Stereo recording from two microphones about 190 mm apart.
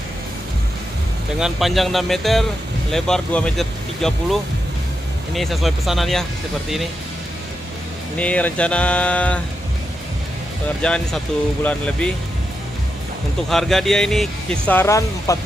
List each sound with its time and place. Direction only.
1.4 s speech: centre (ahead or behind)
8.2 s speech: 5° left (ahead or behind)
10.8 s speech: 5° left (ahead or behind)
13.5 s speech: centre (ahead or behind)